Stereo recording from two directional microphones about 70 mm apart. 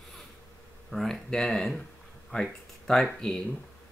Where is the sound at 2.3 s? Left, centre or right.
Centre.